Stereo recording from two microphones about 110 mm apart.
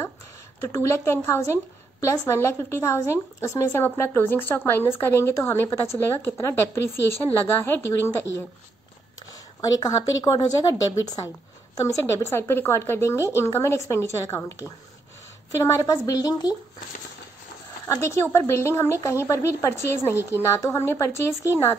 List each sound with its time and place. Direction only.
0.7 s a woman's voice: 30° left (ahead or behind)
9.3 s a woman's voice: 35° left (ahead or behind)
17.8 s a woman's voice: 25° left (ahead or behind)